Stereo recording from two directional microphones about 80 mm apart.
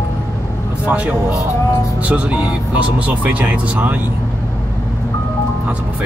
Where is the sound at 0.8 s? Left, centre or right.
Right.